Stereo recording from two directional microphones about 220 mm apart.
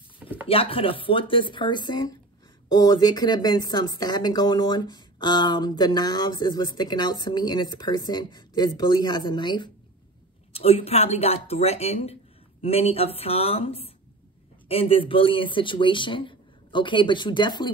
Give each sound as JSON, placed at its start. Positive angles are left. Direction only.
{"t": 0.5, "sound": "speech", "side_deg": 25}